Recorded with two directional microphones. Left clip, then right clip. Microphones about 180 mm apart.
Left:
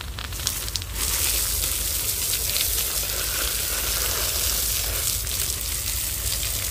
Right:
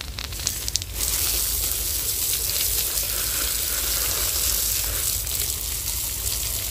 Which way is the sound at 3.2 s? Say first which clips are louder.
Even; 25° right (ahead or behind).